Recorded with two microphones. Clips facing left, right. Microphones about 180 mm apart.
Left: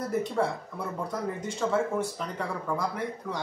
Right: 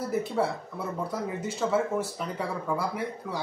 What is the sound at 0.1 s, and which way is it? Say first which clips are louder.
Speech: even; 5° right (ahead or behind).